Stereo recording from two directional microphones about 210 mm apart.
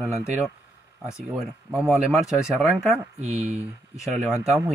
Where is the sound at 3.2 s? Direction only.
30° right (ahead or behind).